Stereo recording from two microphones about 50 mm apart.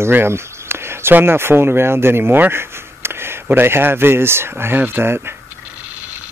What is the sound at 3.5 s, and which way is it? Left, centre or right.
Speech, right.